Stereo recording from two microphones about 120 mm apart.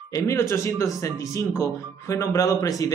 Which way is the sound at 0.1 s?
25° left (ahead or behind).